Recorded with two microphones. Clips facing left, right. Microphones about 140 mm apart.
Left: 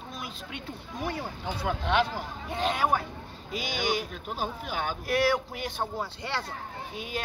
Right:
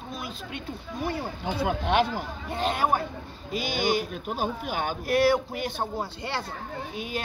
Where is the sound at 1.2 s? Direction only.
15° right (ahead or behind).